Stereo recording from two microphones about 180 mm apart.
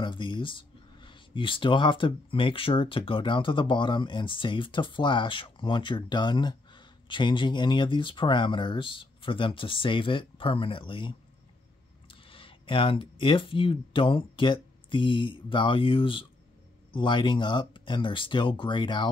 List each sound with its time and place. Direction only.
0.0 s speech: 25° left (ahead or behind)